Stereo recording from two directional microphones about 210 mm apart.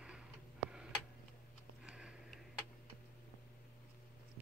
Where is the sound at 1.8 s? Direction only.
5° right (ahead or behind).